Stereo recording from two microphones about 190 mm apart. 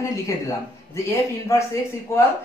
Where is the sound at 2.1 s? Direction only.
15° left (ahead or behind).